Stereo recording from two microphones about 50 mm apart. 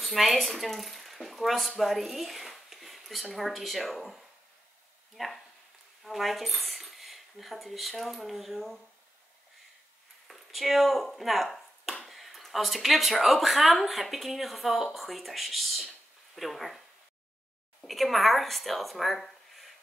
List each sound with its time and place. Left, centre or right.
0.0 s speech: centre
10.2 s a sound: centre
11.1 s speech: centre
17.8 s a woman's voice: centre